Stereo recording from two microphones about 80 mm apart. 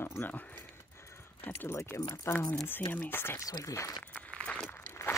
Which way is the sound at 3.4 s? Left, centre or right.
Left.